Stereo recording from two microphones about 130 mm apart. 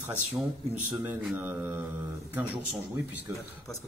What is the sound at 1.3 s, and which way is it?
Speech, 15° right (ahead or behind).